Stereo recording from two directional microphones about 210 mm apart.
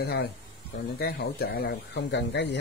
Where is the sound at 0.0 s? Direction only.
50° left (ahead or behind).